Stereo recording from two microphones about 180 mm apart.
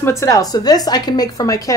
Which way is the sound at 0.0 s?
15° left (ahead or behind).